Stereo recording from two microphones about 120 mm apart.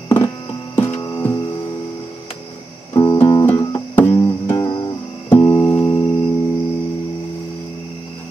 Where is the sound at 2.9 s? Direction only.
30° left (ahead or behind).